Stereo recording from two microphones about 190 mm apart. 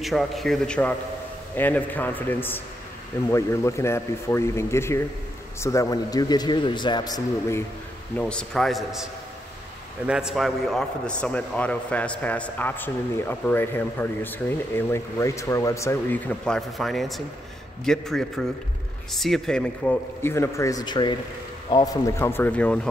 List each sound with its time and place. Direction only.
0.0 s a man's voice: centre (ahead or behind); by 7.6 s 15° left (ahead or behind)
8.2 s a man's voice: 5° left (ahead or behind)